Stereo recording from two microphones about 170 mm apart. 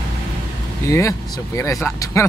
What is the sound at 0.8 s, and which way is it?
Speech, 15° left (ahead or behind).